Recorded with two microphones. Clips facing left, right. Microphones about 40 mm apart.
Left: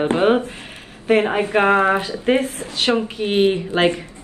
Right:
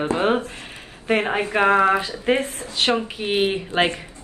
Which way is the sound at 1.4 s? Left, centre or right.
Left.